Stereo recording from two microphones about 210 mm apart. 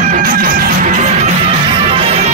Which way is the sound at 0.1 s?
40° right (ahead or behind).